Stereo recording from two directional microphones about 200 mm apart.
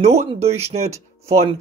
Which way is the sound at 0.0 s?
30° right (ahead or behind).